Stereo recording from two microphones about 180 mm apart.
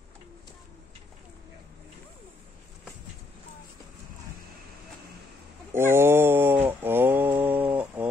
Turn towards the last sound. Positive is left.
turn(degrees=-10)  # may be behind; listen again after turning